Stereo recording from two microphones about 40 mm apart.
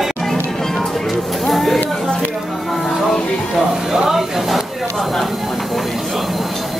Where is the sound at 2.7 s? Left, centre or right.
Centre.